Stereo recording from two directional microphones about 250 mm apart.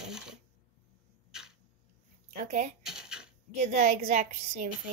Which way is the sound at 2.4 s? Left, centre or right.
Right.